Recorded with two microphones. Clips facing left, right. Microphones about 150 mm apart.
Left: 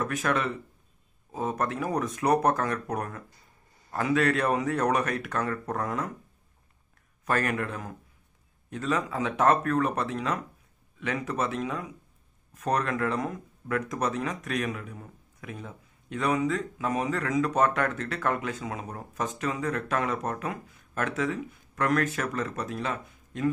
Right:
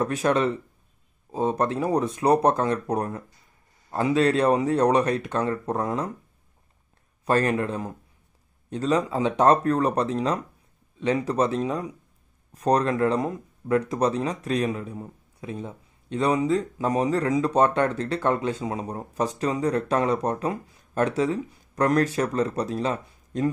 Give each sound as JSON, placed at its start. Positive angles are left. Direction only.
{"t": 0.0, "sound": "speech", "side_deg": -30}
{"t": 7.2, "sound": "speech", "side_deg": -30}